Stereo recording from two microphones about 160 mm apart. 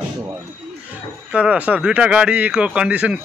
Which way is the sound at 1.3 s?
10° right (ahead or behind).